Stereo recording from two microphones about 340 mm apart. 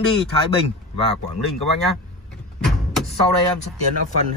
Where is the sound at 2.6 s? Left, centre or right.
Centre.